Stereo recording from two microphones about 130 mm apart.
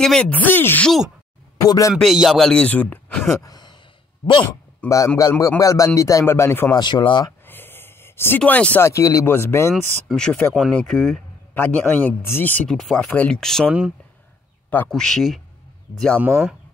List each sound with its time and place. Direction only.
0.0 s speech: 5° left (ahead or behind)
1.6 s speech: 25° left (ahead or behind)
2.0 s speech: centre (ahead or behind)
3.4 s a sound: 30° left (ahead or behind)
4.8 s speech: 25° left (ahead or behind)
6.7 s speech: 35° left (ahead or behind)
7.4 s a sound: 15° left (ahead or behind)
8.4 s speech: 10° left (ahead or behind)
8.8 s speech: 25° left (ahead or behind)
10.0 s speech: 5° left (ahead or behind)
11.5 s speech: 15° left (ahead or behind); by 15.4 s centre (ahead or behind)
16.2 s speech: 10° right (ahead or behind)